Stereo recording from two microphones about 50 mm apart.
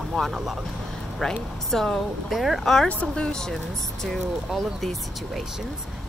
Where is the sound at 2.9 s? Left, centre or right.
Left.